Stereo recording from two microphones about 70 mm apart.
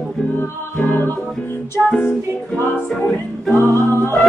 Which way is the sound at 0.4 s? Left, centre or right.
Left.